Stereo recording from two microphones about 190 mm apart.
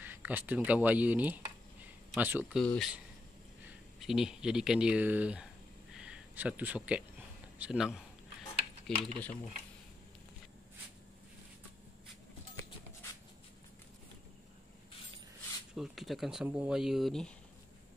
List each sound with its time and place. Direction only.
0.0 s speech: 10° right (ahead or behind)
2.6 s speech: 5° left (ahead or behind)
4.0 s speech: centre (ahead or behind)
15.7 s speech: centre (ahead or behind)